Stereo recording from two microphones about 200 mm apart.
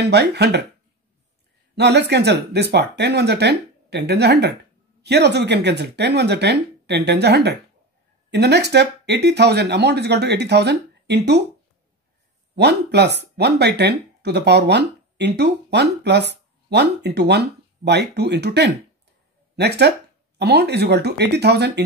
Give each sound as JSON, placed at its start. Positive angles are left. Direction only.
{"t": 0.0, "sound": "speech", "side_deg": -55}
{"t": 1.8, "sound": "speech", "side_deg": -55}
{"t": 12.5, "sound": "speech", "side_deg": -55}